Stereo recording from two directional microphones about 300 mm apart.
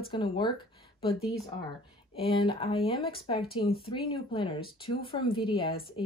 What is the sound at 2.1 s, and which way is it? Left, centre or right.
Speech, centre.